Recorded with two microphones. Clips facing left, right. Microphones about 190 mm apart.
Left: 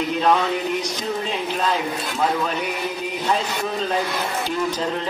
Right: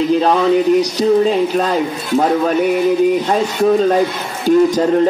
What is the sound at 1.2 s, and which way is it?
Speech, 40° right (ahead or behind).